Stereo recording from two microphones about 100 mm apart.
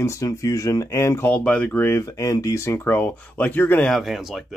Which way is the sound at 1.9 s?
35° left (ahead or behind).